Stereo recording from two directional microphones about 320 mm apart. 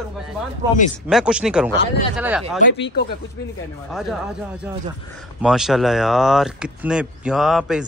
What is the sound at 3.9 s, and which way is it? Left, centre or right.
Speech, centre.